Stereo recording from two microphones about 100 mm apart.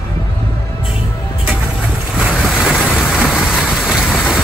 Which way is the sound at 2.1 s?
5° right (ahead or behind).